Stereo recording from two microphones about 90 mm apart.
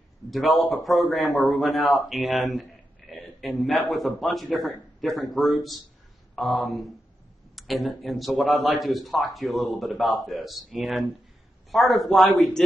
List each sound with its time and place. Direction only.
0.3 s a man's voice: centre (ahead or behind)